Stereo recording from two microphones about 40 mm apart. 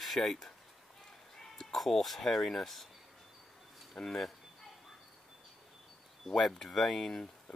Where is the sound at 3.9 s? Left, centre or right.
Centre.